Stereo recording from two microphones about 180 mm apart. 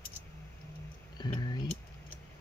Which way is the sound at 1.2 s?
25° left (ahead or behind).